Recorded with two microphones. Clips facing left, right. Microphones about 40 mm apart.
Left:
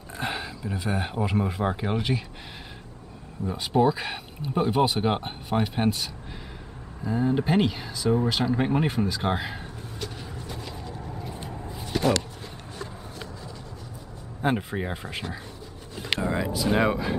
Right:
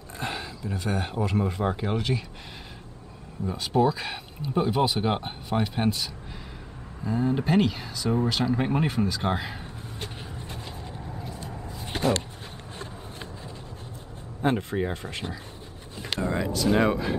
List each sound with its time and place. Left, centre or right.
0.2 s speech: centre
3.5 s speech: centre
7.1 s speech: centre
9.9 s vehicle: right
11.0 s vehicle: centre
11.8 s a sound: right
14.4 s speech: centre